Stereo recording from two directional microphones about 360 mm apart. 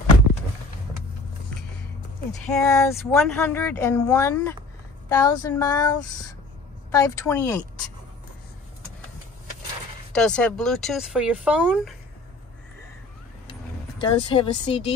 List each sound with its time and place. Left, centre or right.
2.4 s speech: centre
10.1 s speech: centre
13.5 s vehicle: centre